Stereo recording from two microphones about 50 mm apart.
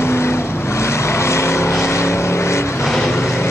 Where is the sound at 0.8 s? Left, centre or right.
Left.